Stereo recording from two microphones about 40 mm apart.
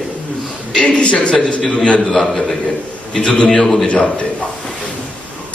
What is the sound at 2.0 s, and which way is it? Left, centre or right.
Speech, centre.